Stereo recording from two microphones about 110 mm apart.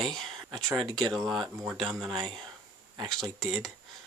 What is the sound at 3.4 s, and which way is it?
Speech, 5° left (ahead or behind).